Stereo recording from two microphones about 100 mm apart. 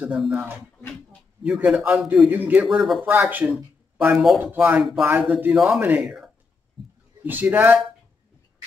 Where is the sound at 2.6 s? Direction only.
Centre (ahead or behind).